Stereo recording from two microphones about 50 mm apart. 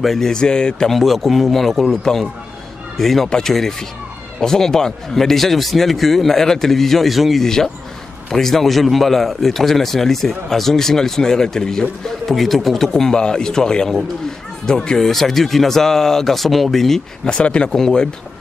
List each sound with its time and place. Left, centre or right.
0.0 s speech: centre
0.3 s a man's voice: centre
0.8 s speech: centre
3.3 s a man's voice: centre
7.4 s a man's voice: centre
17.3 s speech: left
17.7 s a man's voice: centre